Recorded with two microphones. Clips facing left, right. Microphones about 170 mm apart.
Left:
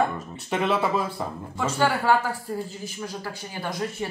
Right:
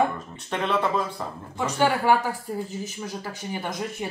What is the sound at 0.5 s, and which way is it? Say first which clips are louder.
Speech: left 1 dB; 10° left (ahead or behind).